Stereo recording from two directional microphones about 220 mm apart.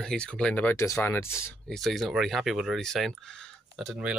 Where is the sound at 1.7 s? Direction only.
Centre (ahead or behind).